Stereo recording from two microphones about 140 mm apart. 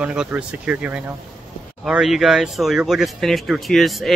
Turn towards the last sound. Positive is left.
turn(degrees=0)  # may be behind; listen again after turning